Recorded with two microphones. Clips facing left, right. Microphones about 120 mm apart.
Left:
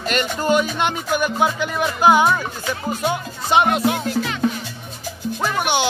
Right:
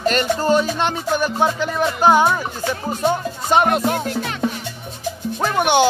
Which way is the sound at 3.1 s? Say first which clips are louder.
Left 2 dB; 40° right (ahead or behind).